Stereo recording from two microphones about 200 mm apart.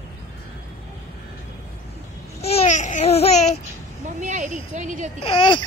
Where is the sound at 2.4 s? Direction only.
35° left (ahead or behind).